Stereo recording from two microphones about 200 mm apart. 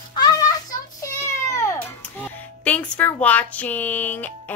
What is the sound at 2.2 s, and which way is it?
Speech, 5° left (ahead or behind).